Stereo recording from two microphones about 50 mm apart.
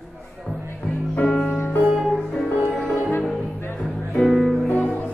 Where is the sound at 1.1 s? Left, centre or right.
Left.